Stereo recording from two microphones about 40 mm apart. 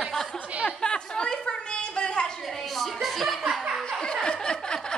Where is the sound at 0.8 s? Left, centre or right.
Left.